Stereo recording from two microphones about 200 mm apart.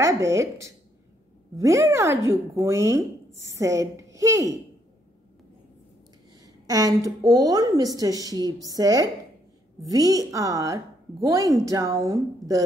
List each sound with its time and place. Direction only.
0.0 s a woman's voice: 15° right (ahead or behind)
6.4 s a woman's voice: 20° right (ahead or behind)